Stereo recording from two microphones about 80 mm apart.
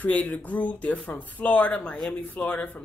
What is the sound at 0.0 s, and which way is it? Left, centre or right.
Speech, centre.